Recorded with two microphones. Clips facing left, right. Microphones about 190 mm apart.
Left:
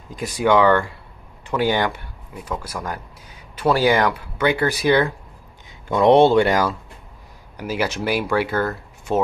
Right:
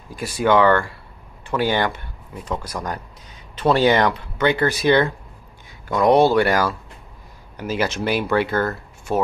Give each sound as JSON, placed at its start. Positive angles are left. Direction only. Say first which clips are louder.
{"t": 0.1, "sound": "speech", "louder": "even", "side_deg": 15}